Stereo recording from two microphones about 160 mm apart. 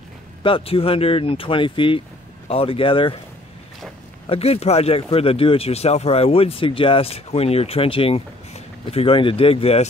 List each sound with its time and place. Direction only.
0.4 s speech: 35° left (ahead or behind)
4.3 s speech: 40° left (ahead or behind)